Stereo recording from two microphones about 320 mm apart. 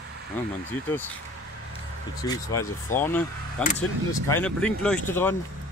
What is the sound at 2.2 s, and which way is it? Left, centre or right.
Speech, centre.